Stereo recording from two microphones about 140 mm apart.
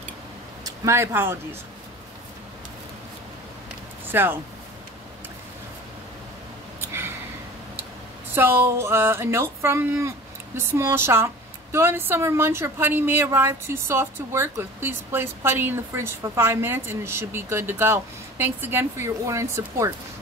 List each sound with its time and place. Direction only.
0.7 s speech: 20° right (ahead or behind)
4.1 s speech: 15° right (ahead or behind)
6.8 s a sound: 15° right (ahead or behind)
8.4 s a woman's voice: 15° right (ahead or behind)